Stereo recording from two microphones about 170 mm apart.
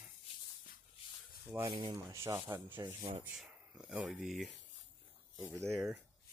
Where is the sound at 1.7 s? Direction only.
25° right (ahead or behind).